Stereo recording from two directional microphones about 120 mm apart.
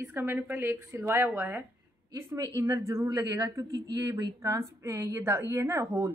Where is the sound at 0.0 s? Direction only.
20° right (ahead or behind).